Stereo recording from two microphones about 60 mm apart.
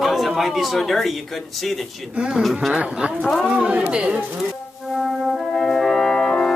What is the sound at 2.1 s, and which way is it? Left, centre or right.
Speech, centre.